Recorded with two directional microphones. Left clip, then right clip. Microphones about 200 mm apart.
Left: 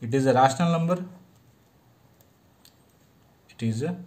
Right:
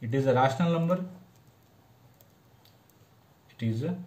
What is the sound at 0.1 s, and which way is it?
Speech, 50° left (ahead or behind).